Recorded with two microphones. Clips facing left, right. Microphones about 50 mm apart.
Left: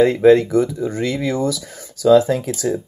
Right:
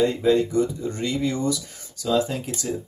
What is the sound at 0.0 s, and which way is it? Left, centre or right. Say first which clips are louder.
Speech: left 8 dB; left.